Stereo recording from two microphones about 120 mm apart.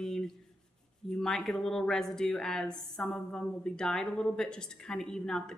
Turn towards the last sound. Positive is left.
turn(degrees=5)  # may be behind; listen again after turning